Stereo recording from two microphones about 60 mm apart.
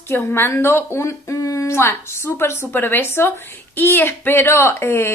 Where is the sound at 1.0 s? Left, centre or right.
Left.